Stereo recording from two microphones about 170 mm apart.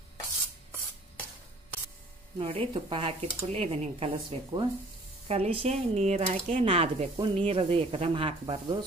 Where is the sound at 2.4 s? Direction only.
35° right (ahead or behind).